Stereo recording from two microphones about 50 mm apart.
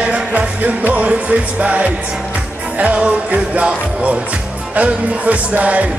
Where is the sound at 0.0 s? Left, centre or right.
Right.